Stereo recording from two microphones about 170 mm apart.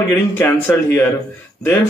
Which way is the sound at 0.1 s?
10° left (ahead or behind).